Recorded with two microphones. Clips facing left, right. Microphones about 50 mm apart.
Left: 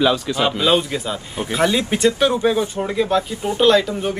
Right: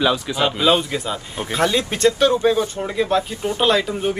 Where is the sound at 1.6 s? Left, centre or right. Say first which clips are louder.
Even; centre.